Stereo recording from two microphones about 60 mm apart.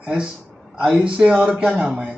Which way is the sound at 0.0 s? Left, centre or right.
Centre.